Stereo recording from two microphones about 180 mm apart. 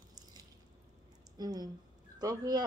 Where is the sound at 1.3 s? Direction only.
20° right (ahead or behind).